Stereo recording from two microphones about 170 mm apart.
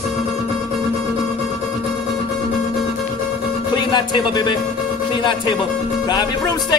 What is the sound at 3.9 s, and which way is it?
Music, 25° left (ahead or behind).